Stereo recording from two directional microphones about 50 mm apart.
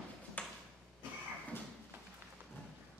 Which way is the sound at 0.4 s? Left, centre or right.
Left.